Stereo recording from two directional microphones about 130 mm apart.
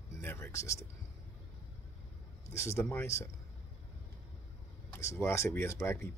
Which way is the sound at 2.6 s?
20° left (ahead or behind).